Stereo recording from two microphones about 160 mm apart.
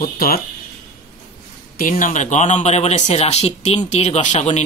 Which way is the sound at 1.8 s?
60° left (ahead or behind).